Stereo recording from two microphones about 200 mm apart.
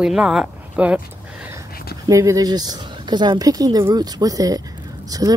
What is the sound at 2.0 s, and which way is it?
Speech, 15° right (ahead or behind).